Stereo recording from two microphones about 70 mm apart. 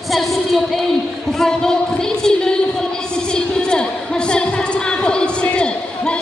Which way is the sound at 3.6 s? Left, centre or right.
Centre.